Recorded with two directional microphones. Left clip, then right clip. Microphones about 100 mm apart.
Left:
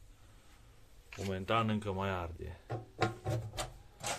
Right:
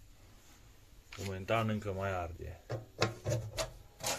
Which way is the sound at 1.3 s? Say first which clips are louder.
Left 1 dB; 40° left (ahead or behind).